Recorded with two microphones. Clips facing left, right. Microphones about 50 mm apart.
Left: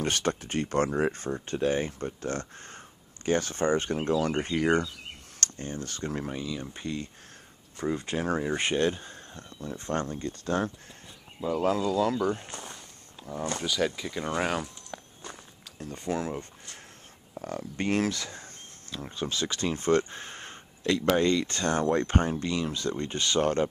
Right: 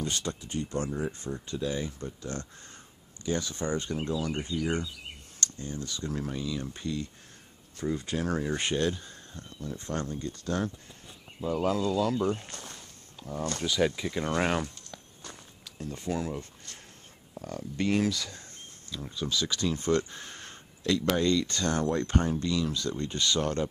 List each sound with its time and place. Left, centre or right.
0.0 s speech: left
5.4 s speech: left
6.2 s speech: centre; by 10.7 s left
12.3 s speech: centre
12.7 s a sound: centre
13.7 s speech: centre
14.9 s walk: left
17.4 s speech: left